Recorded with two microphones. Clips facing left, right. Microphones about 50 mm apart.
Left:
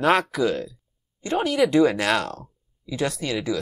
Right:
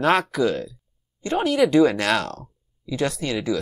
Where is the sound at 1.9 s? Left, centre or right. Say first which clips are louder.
Even; left.